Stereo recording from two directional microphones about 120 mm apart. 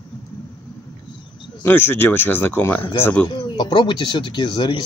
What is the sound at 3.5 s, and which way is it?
Speech, 40° left (ahead or behind).